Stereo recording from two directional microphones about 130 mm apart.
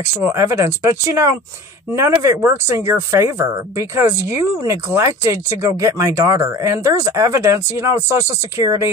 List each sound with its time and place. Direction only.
0.0 s speech: 20° right (ahead or behind)